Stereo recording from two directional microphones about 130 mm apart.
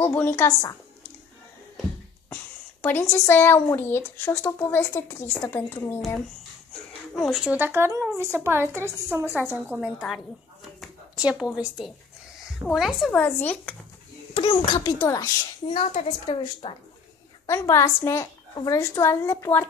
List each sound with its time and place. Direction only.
0.0 s a woman's voice: 15° left (ahead or behind)
2.8 s speech: 15° left (ahead or behind)
7.2 s a woman's voice: centre (ahead or behind)
7.5 s a woman's voice: 15° right (ahead or behind); by 13.1 s centre (ahead or behind)
13.1 s speech: 10° left (ahead or behind)
14.3 s a child's voice: 40° left (ahead or behind)
15.0 s a woman's voice: 25° left (ahead or behind)
15.7 s speech: 55° left (ahead or behind)
16.3 s a woman's voice: 40° left (ahead or behind)
17.5 s a woman's voice: 25° left (ahead or behind)